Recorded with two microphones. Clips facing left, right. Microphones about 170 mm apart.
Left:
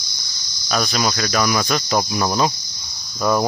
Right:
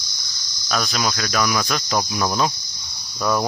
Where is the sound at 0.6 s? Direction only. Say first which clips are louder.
Left 2 dB; 5° left (ahead or behind).